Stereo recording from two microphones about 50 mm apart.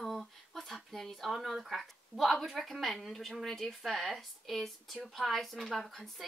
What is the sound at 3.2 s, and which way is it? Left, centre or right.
A woman's voice, centre.